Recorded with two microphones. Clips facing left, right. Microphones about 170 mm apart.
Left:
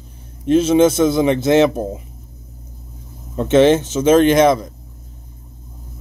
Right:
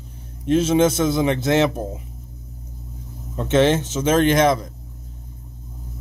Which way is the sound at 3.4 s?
Centre (ahead or behind).